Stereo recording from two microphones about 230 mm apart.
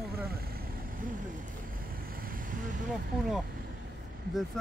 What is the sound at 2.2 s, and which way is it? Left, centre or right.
Vehicle, right.